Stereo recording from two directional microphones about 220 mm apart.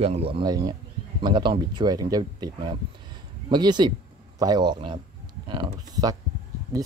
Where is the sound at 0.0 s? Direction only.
25° right (ahead or behind).